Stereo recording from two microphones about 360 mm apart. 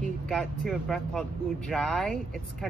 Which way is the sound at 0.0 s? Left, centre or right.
Centre.